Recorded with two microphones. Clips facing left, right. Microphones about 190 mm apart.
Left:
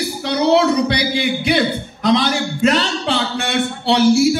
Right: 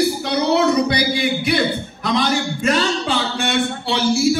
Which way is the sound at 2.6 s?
65° left (ahead or behind).